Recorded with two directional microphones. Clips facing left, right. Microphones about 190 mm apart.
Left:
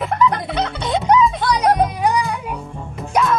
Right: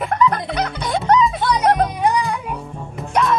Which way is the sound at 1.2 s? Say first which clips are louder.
Even; centre (ahead or behind).